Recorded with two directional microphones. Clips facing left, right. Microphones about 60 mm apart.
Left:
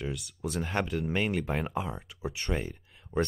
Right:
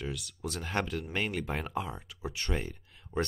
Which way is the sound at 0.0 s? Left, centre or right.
Centre.